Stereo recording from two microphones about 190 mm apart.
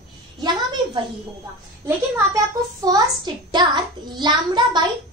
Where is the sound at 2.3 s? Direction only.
20° right (ahead or behind).